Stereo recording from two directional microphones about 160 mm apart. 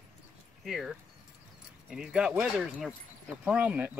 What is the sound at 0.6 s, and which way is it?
Speech, centre (ahead or behind).